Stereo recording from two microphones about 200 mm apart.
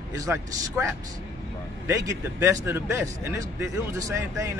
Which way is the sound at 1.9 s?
15° right (ahead or behind).